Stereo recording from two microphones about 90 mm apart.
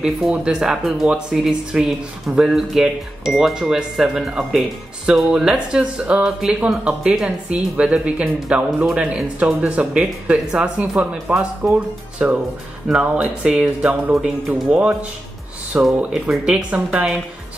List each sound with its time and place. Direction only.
0.0 s speech: 10° right (ahead or behind)